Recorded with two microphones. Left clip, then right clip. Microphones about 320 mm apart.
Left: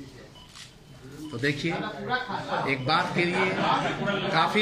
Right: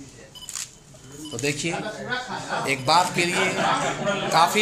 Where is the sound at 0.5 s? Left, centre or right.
Right.